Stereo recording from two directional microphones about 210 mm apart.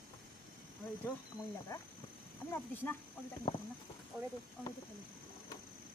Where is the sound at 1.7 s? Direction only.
15° left (ahead or behind).